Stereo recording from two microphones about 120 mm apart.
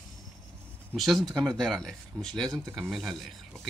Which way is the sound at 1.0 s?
Centre (ahead or behind).